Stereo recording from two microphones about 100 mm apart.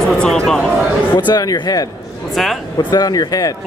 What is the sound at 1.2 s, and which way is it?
Speech, 45° left (ahead or behind).